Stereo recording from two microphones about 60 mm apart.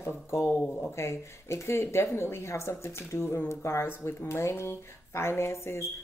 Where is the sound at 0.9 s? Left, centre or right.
Left.